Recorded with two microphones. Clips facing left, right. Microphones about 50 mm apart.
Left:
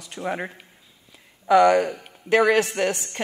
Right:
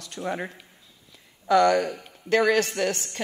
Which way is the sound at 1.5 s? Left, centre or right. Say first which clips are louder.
Left 3 dB; centre.